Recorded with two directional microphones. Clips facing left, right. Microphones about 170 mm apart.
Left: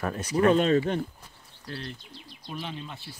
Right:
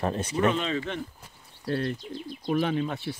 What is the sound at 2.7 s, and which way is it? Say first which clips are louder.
Speech: right 11 dB; 65° right (ahead or behind).